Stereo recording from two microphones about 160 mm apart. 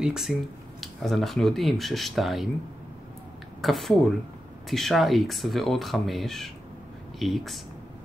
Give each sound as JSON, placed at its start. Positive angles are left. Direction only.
{"t": 0.0, "sound": "speech", "side_deg": -5}
{"t": 3.6, "sound": "speech", "side_deg": 0}